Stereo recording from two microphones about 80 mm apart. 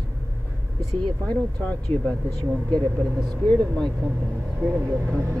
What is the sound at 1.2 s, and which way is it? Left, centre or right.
Speech, centre.